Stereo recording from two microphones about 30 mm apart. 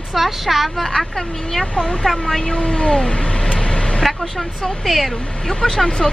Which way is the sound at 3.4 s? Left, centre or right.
Left.